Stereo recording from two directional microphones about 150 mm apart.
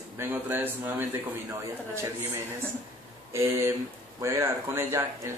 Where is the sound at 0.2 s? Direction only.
15° right (ahead or behind).